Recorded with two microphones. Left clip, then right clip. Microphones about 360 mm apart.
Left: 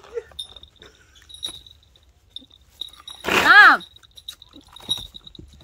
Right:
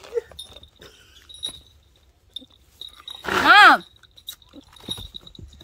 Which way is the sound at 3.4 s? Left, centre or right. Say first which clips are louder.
Even; right.